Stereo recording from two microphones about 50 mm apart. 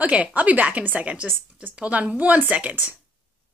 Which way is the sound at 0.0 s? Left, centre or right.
Right.